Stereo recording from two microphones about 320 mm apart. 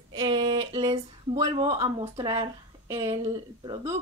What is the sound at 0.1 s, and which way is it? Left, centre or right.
Speech, centre.